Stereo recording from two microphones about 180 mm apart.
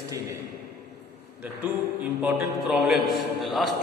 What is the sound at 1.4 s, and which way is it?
A man's voice, 10° right (ahead or behind).